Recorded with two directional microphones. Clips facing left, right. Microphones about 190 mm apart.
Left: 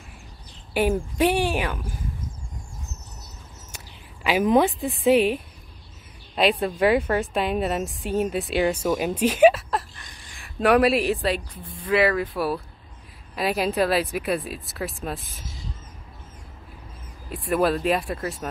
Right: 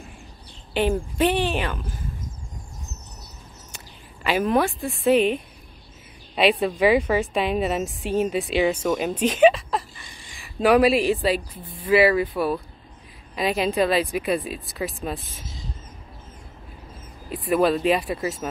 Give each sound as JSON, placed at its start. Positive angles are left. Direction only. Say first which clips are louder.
{"t": 0.7, "sound": "speech", "louder": "even", "side_deg": 10}
{"t": 3.7, "sound": "a sound", "louder": "even", "side_deg": 10}
{"t": 4.8, "sound": "speech", "louder": "even", "side_deg": 15}
{"t": 6.3, "sound": "speech", "louder": "right 2 dB", "side_deg": 0}
{"t": 17.3, "sound": "speech", "louder": "right 2 dB", "side_deg": 0}